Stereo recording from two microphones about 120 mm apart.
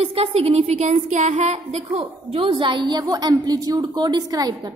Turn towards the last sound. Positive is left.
turn(degrees=-30)  # may be behind; listen again after turning